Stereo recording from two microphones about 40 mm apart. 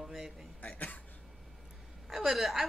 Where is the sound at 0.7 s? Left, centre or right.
Left.